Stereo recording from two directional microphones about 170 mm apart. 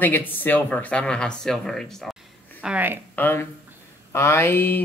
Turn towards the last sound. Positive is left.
turn(degrees=15)  # may be behind; listen again after turning